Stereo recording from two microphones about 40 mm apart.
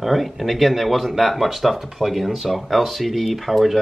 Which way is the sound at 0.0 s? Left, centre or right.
Centre.